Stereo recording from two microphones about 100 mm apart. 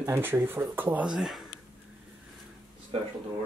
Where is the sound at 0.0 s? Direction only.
25° right (ahead or behind).